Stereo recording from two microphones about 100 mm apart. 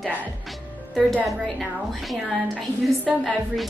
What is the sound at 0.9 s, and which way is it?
A woman's voice, centre (ahead or behind).